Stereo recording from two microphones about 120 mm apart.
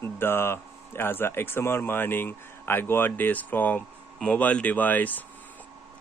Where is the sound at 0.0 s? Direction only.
20° left (ahead or behind).